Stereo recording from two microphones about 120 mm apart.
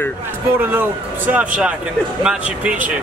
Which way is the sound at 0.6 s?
15° right (ahead or behind).